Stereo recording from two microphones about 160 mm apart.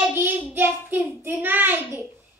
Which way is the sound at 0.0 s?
10° right (ahead or behind).